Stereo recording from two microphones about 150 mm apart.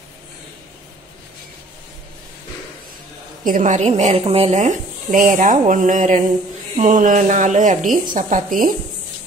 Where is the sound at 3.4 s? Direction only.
60° right (ahead or behind).